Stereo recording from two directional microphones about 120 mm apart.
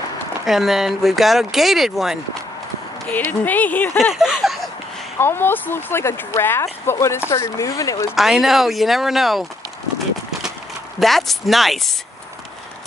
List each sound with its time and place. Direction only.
0.5 s speech: centre (ahead or behind)
3.1 s speech: 15° left (ahead or behind)
4.0 s speech: 5° right (ahead or behind)
5.2 s speech: 20° left (ahead or behind)
8.2 s speech: centre (ahead or behind)
11.0 s speech: centre (ahead or behind)